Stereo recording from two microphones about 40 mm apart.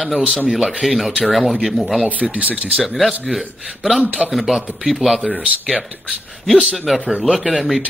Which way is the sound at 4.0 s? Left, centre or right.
Right.